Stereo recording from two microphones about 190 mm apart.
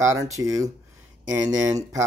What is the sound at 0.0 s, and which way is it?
Speech, 15° right (ahead or behind).